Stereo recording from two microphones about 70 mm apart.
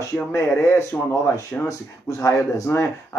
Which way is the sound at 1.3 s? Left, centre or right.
Left.